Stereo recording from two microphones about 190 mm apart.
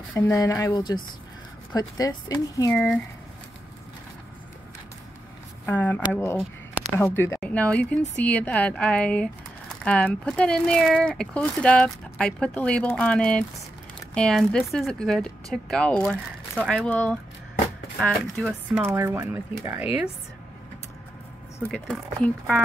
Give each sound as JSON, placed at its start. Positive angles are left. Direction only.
{"t": 0.1, "sound": "a woman's voice", "side_deg": 15}
{"t": 2.7, "sound": "a woman's voice", "side_deg": 5}
{"t": 5.7, "sound": "a woman's voice", "side_deg": 10}
{"t": 21.7, "sound": "speech", "side_deg": 0}